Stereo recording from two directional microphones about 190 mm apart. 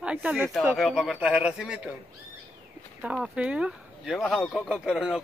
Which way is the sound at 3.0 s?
5° right (ahead or behind).